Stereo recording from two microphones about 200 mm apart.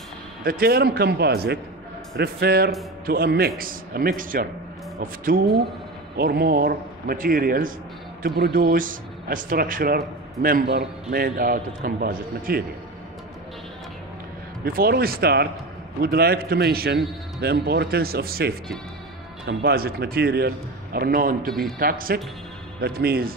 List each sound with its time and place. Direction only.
0.5 s a man's voice: 50° right (ahead or behind)
14.6 s a man's voice: 50° right (ahead or behind)